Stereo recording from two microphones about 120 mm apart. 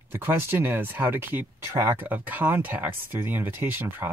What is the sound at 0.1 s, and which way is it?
Speech, 20° right (ahead or behind).